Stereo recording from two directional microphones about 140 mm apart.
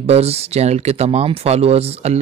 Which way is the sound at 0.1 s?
50° right (ahead or behind).